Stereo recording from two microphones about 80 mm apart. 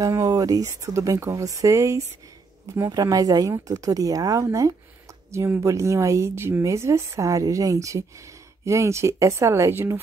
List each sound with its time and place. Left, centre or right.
0.0 s speech: right